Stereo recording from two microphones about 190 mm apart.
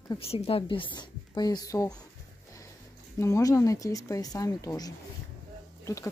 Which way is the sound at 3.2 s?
15° left (ahead or behind).